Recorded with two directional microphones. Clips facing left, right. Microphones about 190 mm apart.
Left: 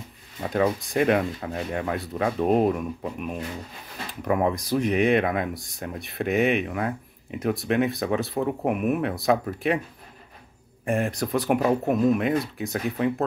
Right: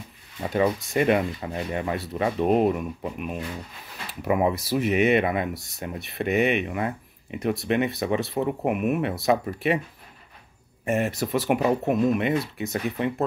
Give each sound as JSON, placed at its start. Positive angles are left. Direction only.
{"t": 0.4, "sound": "speech", "side_deg": 0}
{"t": 10.9, "sound": "speech", "side_deg": -5}